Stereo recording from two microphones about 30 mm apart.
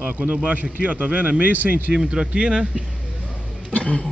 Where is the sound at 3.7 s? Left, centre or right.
Left.